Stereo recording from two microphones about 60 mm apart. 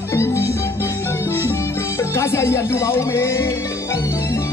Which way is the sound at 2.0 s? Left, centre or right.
Left.